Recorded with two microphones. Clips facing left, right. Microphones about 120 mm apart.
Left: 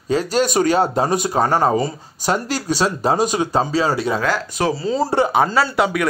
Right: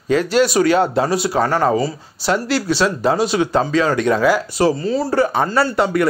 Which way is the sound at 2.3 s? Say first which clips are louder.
Right 3 dB; 40° left (ahead or behind).